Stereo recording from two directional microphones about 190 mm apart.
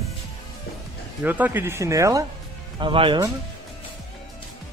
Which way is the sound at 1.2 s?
10° right (ahead or behind).